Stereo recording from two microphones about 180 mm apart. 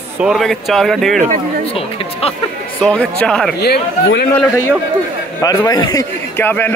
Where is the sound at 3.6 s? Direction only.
65° left (ahead or behind).